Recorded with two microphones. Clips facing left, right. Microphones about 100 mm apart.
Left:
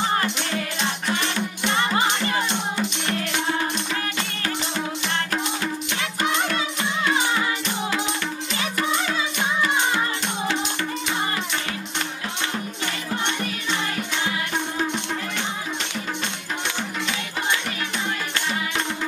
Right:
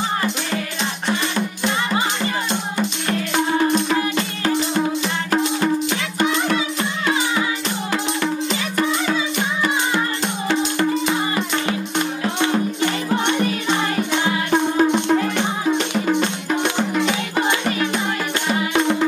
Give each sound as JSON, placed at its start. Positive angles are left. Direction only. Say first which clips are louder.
{"t": 6.2, "sound": "music", "louder": "right 5 dB", "side_deg": 0}
{"t": 13.7, "sound": "music", "louder": "right 7 dB", "side_deg": -50}
{"t": 18.5, "sound": "music", "louder": "right 12 dB", "side_deg": -55}